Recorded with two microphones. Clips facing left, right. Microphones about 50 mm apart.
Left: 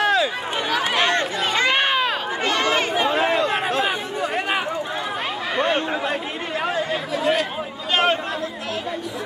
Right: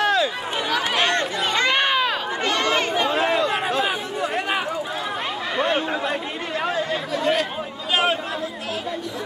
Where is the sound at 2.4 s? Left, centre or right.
Centre.